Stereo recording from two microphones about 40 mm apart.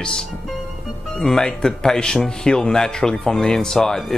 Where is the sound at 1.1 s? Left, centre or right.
Centre.